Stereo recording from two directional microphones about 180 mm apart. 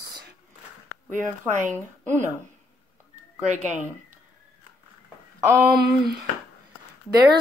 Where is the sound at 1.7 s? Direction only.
10° right (ahead or behind).